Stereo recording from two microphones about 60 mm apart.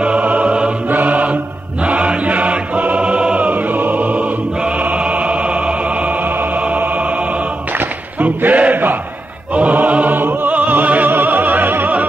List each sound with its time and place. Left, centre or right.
0.0 s music: right
0.8 s mantra: right
6.6 s choir: right
9.5 s opera: right